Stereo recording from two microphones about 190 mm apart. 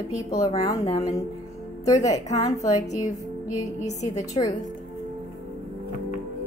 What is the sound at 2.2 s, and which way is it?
A woman's voice, 35° left (ahead or behind).